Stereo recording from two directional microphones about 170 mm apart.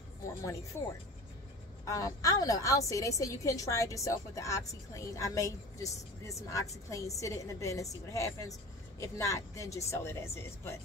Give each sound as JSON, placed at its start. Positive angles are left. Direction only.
{"t": 1.9, "sound": "a woman's voice", "side_deg": 20}